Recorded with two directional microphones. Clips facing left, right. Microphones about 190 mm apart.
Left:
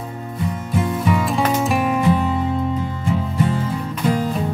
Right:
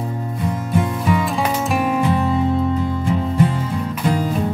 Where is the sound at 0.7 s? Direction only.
Centre (ahead or behind).